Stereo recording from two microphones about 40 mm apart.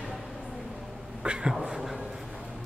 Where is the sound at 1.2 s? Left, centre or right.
Right.